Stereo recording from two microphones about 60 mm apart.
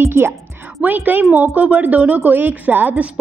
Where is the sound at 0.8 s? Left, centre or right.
Right.